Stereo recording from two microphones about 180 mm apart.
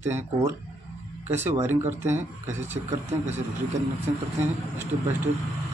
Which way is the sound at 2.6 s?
40° right (ahead or behind).